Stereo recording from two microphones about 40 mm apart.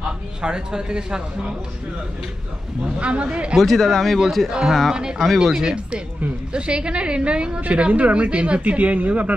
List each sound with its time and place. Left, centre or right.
0.4 s a woman's voice: right
3.0 s speech: right
3.5 s speech: centre
6.5 s a woman's voice: right
7.6 s speech: right